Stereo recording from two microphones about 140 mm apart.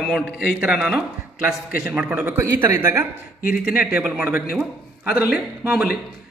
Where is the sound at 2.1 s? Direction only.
20° right (ahead or behind).